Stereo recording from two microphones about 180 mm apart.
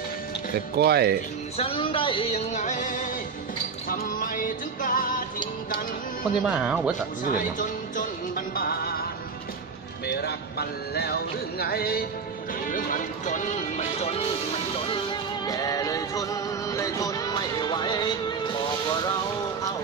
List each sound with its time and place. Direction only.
0.7 s speech: 60° right (ahead or behind)
1.6 s speech: 30° left (ahead or behind)
2.5 s music: 45° left (ahead or behind)
6.4 s speech: 5° right (ahead or behind)
7.2 s music: 45° left (ahead or behind)
10.2 s speech: 60° left (ahead or behind)
12.6 s music: 50° left (ahead or behind)
15.4 s music: 20° left (ahead or behind)